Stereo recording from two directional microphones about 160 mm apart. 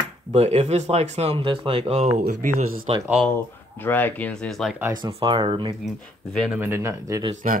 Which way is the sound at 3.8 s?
10° left (ahead or behind).